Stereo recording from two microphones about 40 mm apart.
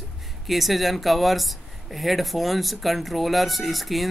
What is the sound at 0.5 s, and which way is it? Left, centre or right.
Speech, centre.